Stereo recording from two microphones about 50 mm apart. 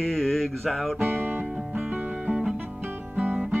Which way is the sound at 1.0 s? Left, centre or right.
Right.